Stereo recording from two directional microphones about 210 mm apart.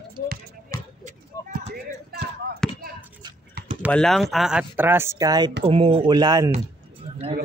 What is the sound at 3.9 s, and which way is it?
Speech, 5° left (ahead or behind).